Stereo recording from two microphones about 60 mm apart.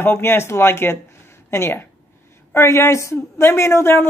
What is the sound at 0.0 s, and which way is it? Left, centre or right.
Speech, left.